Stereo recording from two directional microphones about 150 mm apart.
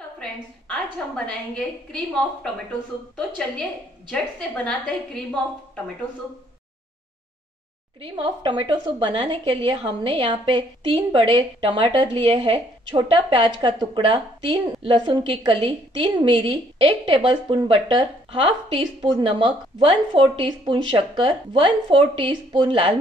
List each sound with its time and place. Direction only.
1.1 s a woman's voice: 5° left (ahead or behind)
3.2 s a woman's voice: 5° left (ahead or behind)
4.6 s a woman's voice: 5° left (ahead or behind)
8.0 s a woman's voice: 30° right (ahead or behind)